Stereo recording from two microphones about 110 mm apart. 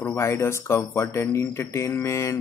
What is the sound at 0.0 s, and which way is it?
Speech, 25° left (ahead or behind).